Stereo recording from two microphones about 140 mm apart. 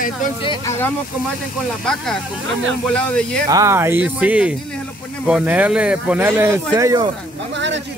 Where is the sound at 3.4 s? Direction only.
20° right (ahead or behind).